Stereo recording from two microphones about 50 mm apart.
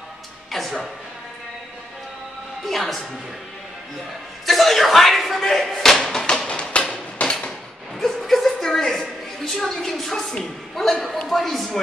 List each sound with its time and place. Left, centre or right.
0.5 s music: centre
2.7 s a woman's voice: centre
4.5 s slam: centre
6.2 s music: centre
6.5 s a sound: left
8.0 s a woman's voice: centre